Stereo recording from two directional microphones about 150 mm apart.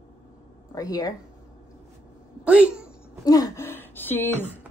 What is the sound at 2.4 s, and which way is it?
Speech, 10° right (ahead or behind).